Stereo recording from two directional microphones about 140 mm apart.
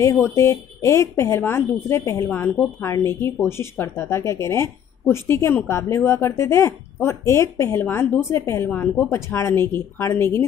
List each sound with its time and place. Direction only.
0.0 s a woman's voice: 20° left (ahead or behind)